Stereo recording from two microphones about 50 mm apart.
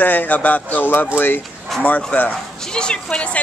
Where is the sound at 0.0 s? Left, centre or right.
Left.